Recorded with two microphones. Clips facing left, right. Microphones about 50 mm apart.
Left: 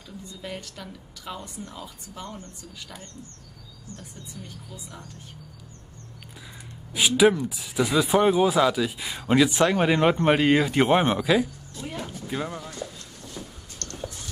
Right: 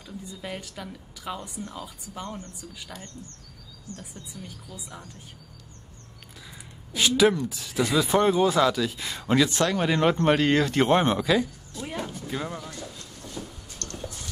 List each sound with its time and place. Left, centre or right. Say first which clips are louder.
0.3 s a woman's voice: even; centre
6.9 s speech: left 2 dB; centre
11.8 s music: right 1 dB; centre
12.3 s speech: left 1 dB; centre
13.8 s a sound: right 1 dB; right